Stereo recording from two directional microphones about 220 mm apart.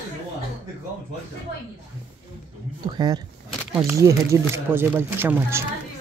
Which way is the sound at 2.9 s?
20° right (ahead or behind).